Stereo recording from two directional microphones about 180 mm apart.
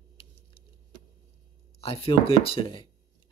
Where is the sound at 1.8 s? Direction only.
30° left (ahead or behind).